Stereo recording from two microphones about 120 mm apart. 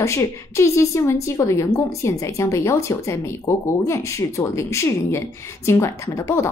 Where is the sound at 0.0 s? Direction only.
25° left (ahead or behind).